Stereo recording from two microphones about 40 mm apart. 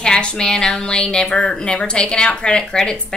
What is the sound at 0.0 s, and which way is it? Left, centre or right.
A woman's voice, left.